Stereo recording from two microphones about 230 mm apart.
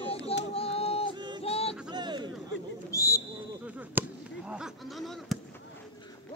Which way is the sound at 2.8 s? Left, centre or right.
Centre.